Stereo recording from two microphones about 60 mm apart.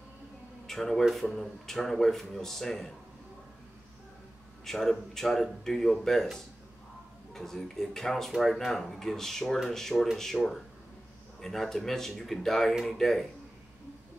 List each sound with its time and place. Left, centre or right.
0.7 s speech: centre
4.6 s speech: centre
7.3 s speech: centre